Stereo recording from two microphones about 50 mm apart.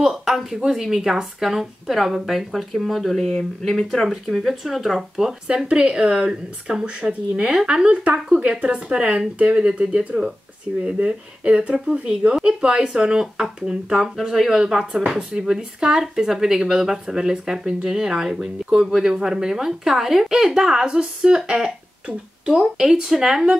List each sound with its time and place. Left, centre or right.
0.0 s speech: centre
4.1 s speech: centre; by 11.7 s right
11.7 s speech: centre
22.0 s speech: right
22.8 s speech: centre